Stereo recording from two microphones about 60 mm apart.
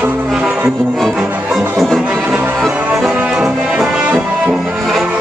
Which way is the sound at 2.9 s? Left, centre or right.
Centre.